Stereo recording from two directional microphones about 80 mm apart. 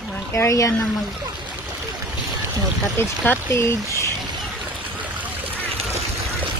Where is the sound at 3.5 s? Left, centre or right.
Left.